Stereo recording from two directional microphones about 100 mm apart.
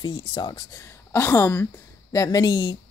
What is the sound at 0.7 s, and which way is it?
A woman's voice, 25° left (ahead or behind).